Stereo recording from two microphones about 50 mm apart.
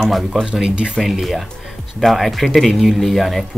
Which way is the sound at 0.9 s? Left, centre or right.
Centre.